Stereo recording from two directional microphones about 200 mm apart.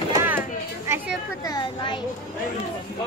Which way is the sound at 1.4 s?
20° left (ahead or behind).